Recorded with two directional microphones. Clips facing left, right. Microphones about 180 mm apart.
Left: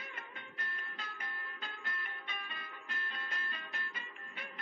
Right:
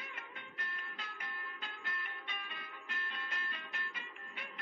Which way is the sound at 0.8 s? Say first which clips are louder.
Left 1 dB; 40° left (ahead or behind).